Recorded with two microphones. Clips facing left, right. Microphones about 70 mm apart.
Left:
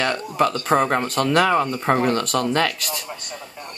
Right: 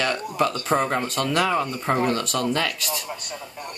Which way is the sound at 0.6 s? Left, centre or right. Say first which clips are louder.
Left 3 dB; left.